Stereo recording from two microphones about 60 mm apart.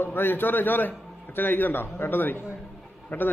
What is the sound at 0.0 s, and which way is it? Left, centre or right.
A man's voice, left.